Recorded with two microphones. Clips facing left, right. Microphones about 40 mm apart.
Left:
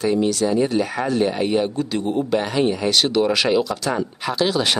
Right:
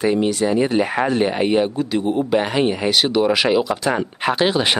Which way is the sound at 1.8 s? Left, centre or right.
Centre.